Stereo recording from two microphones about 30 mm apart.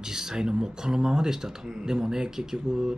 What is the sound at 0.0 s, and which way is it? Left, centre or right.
Speech, centre.